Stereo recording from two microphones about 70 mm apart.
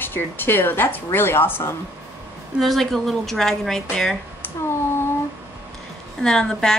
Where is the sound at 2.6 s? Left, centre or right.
Centre.